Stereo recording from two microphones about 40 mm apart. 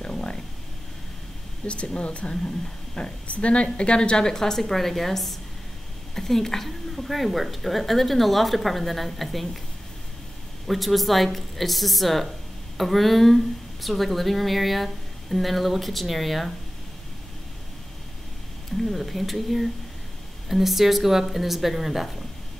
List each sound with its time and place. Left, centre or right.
0.0 s a sound: left
1.7 s a woman's voice: left; by 9.6 s centre
10.7 s a woman's voice: centre
18.8 s a woman's voice: centre